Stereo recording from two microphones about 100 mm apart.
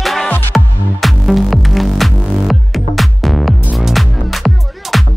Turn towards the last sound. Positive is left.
turn(degrees=0)  # may be behind; listen again after turning